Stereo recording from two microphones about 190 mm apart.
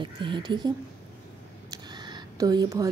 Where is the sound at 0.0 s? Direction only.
25° right (ahead or behind).